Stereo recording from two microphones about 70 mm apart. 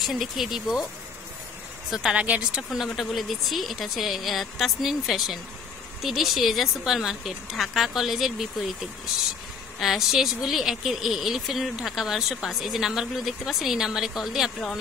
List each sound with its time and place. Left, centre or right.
0.0 s speech: centre
1.9 s speech: centre
2.2 s speech: centre
2.7 s speech: centre
9.8 s speech: centre